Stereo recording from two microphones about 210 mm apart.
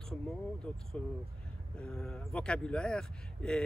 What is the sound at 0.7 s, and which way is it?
Speech, 5° left (ahead or behind).